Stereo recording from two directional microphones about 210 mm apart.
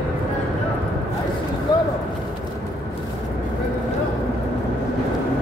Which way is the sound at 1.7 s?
20° left (ahead or behind).